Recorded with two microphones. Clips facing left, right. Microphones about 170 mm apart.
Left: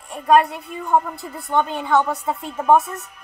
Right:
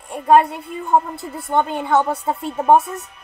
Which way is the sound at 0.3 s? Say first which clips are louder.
Right 2 dB; 25° right (ahead or behind).